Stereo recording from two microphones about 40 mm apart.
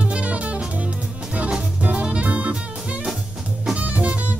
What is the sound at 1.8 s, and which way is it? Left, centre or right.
Jazz, right.